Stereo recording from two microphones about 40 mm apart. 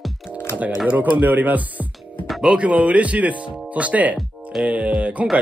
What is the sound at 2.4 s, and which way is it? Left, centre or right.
Speech, right.